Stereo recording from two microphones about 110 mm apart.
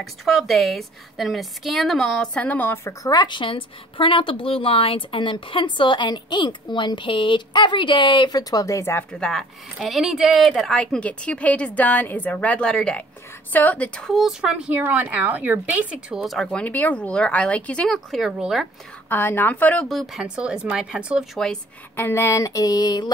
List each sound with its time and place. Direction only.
0.0 s a woman's voice: centre (ahead or behind)
2.3 s a woman's voice: 15° left (ahead or behind)
2.8 s a woman's voice: 30° left (ahead or behind)
9.1 s a woman's voice: 5° left (ahead or behind)
10.5 s a woman's voice: 10° left (ahead or behind)
16.5 s a woman's voice: 15° left (ahead or behind)
17.8 s a woman's voice: centre (ahead or behind)
19.0 s a woman's voice: 20° left (ahead or behind)
19.9 s a woman's voice: centre (ahead or behind)
21.9 s a sound: 20° left (ahead or behind); by 23.1 s 40° left (ahead or behind)